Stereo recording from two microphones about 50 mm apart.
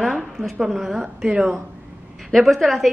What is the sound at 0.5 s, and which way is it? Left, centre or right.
Speech, centre.